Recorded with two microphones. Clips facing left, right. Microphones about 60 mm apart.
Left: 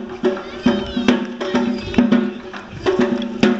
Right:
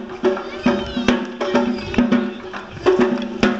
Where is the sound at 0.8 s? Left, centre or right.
Centre.